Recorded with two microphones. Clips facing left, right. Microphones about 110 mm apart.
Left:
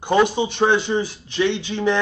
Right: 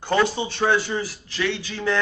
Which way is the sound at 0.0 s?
15° left (ahead or behind).